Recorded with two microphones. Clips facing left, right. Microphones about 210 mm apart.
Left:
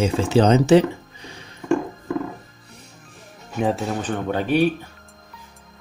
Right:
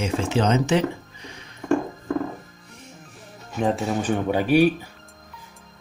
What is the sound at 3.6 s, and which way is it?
Speech, centre (ahead or behind).